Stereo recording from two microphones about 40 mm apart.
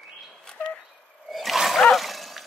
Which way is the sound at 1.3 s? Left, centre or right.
Centre.